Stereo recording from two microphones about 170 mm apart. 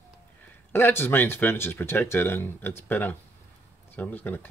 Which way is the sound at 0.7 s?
15° left (ahead or behind).